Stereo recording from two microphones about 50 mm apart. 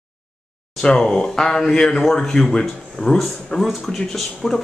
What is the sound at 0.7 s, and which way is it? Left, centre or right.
Speech, centre.